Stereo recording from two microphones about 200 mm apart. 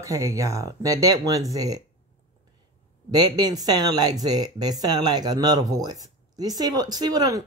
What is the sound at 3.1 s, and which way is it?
Speech, 20° right (ahead or behind).